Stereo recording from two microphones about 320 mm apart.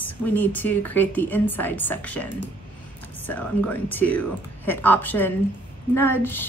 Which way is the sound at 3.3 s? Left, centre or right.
Centre.